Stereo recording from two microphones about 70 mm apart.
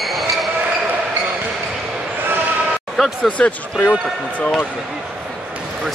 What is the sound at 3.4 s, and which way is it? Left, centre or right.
Speech, left.